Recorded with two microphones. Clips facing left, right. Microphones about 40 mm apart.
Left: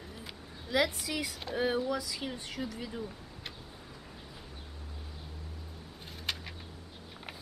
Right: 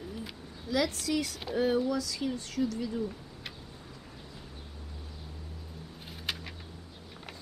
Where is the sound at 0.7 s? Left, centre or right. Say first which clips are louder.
Right 1 dB; centre.